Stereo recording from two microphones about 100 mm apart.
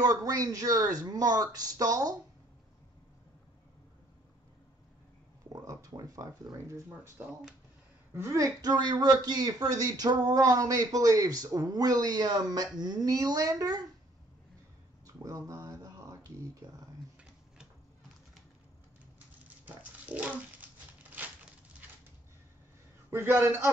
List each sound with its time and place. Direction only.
0.0 s speech: 40° right (ahead or behind)
5.5 s speech: 35° right (ahead or behind)
7.2 s speech: 20° right (ahead or behind); by 13.8 s 35° right (ahead or behind)
15.0 s a sound: 35° right (ahead or behind)
19.1 s dog: 15° right (ahead or behind)
23.0 s a man's voice: 20° right (ahead or behind)